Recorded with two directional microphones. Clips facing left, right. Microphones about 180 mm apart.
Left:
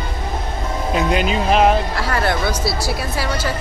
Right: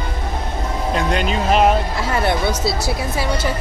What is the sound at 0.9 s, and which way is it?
Speech, 5° left (ahead or behind).